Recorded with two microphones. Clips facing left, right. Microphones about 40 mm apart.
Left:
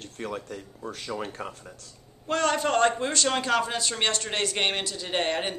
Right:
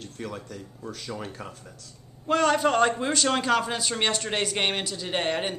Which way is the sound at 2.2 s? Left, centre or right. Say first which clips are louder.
Right 3 dB; centre.